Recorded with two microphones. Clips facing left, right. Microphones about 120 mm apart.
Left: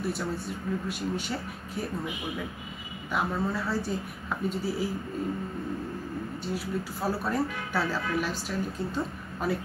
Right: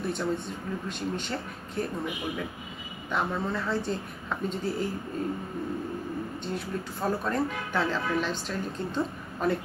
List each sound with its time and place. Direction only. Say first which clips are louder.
0.0 s a woman's voice: right 2 dB; 5° left (ahead or behind)
3.1 s a woman's voice: even; 5° left (ahead or behind)
6.4 s a woman's voice: left 1 dB; 5° left (ahead or behind)